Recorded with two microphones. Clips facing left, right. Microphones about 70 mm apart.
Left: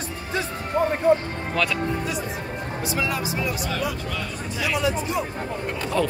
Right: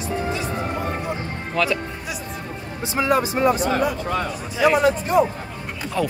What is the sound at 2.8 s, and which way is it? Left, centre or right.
Speech, right.